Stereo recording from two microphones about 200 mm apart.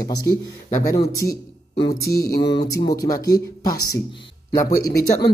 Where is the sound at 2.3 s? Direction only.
50° left (ahead or behind).